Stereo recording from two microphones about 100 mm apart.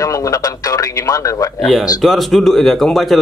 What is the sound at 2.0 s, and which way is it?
Speech, centre (ahead or behind).